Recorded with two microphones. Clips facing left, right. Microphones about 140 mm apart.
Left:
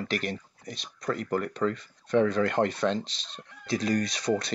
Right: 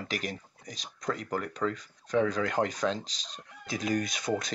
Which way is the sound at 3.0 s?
40° right (ahead or behind).